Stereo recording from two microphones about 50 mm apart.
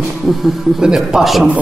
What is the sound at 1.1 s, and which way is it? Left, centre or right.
Speech, centre.